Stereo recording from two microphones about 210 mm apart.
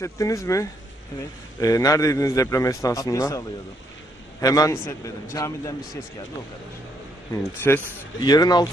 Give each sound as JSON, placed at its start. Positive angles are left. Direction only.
{"t": 0.0, "sound": "a man's voice", "side_deg": 15}
{"t": 7.7, "sound": "a man's voice", "side_deg": 10}